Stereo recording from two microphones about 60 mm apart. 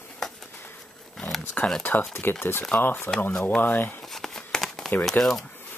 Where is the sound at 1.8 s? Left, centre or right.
Left.